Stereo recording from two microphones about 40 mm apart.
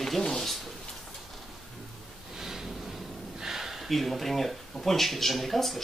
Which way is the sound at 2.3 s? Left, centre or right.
Centre.